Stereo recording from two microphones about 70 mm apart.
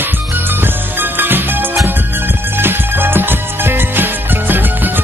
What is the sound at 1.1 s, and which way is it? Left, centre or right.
Music, right.